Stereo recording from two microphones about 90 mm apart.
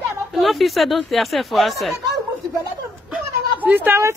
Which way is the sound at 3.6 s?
20° right (ahead or behind).